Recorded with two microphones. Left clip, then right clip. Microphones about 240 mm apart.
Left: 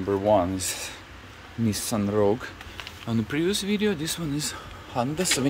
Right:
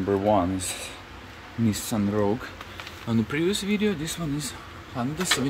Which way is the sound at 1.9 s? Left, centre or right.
Centre.